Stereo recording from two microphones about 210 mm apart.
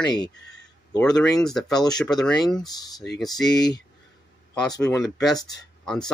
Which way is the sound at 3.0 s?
55° left (ahead or behind).